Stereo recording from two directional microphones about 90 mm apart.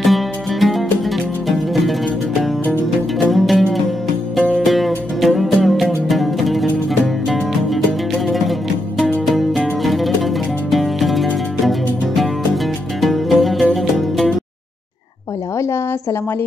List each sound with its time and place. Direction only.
0.0 s music: centre (ahead or behind)
3.3 s music: centre (ahead or behind)
13.0 s music: centre (ahead or behind)
15.5 s a sound: 30° left (ahead or behind)